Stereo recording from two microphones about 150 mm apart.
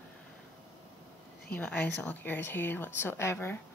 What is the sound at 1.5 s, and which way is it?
A woman's voice, 10° left (ahead or behind).